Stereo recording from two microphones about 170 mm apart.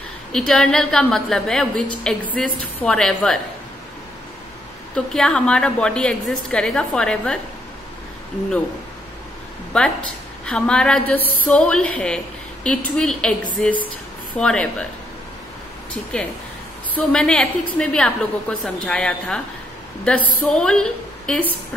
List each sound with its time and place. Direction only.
0.3 s a woman's voice: 5° left (ahead or behind)
4.9 s a woman's voice: 5° left (ahead or behind)
9.7 s a woman's voice: 5° left (ahead or behind)
16.9 s a woman's voice: 5° left (ahead or behind)